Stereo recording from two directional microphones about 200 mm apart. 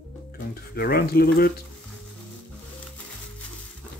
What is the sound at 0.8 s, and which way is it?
Speech, 50° left (ahead or behind).